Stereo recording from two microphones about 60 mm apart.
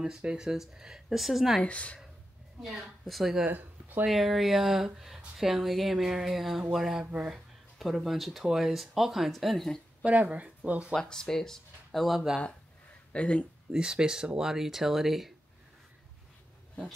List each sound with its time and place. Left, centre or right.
0.0 s speech: centre
1.6 s speech: left
3.1 s speech: centre
3.4 s speech: right
4.1 s speech: centre
10.0 s speech: right
11.0 s speech: centre
13.1 s speech: centre
13.7 s speech: centre